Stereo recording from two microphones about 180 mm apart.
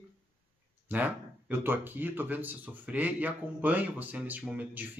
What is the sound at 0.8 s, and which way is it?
Speech, 10° right (ahead or behind).